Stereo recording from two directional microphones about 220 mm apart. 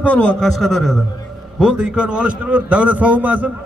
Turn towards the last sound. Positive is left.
turn(degrees=-5)  # may be behind; listen again after turning